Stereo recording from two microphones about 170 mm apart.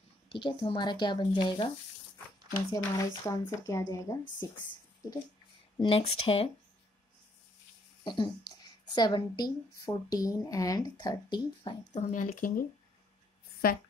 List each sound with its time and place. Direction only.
0.3 s a woman's voice: 30° left (ahead or behind)
2.7 s a woman's voice: 20° left (ahead or behind)
5.8 s speech: 30° left (ahead or behind)
8.0 s a woman's voice: 25° left (ahead or behind)
11.9 s speech: 50° left (ahead or behind)